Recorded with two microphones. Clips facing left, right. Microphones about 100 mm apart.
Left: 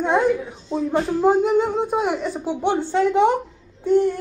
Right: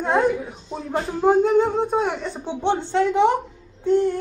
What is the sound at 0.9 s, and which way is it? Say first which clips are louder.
Speech: even; centre (ahead or behind).